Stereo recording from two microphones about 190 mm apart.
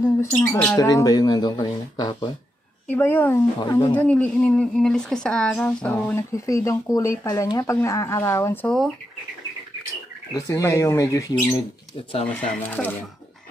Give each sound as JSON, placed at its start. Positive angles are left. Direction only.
{"t": 0.5, "sound": "speech", "side_deg": 10}
{"t": 2.9, "sound": "speech", "side_deg": 10}
{"t": 4.0, "sound": "speech", "side_deg": 5}
{"t": 8.6, "sound": "speech", "side_deg": 0}
{"t": 10.3, "sound": "speech", "side_deg": 15}
{"t": 12.3, "sound": "speech", "side_deg": 5}